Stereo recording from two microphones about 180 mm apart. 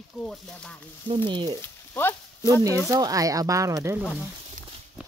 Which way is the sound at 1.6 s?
10° left (ahead or behind).